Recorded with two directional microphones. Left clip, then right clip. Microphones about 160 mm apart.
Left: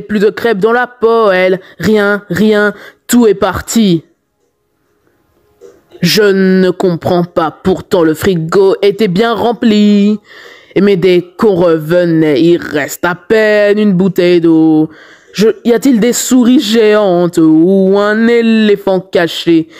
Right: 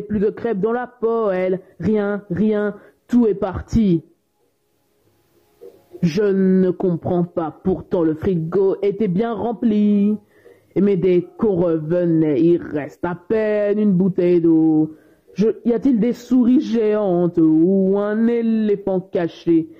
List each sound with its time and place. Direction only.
0.1 s speech: 20° left (ahead or behind)
5.9 s speech: 20° left (ahead or behind)
15.3 s speech: 20° left (ahead or behind)